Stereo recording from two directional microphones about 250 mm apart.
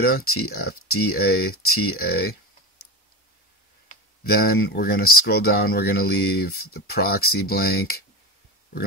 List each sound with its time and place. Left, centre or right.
0.0 s speech: left
3.9 s speech: left